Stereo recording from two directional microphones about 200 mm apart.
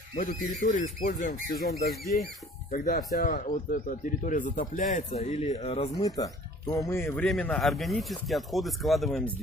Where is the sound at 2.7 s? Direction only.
45° left (ahead or behind); by 5.9 s 30° left (ahead or behind).